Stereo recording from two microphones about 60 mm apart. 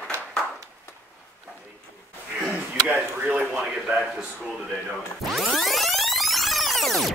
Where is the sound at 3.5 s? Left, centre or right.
Centre.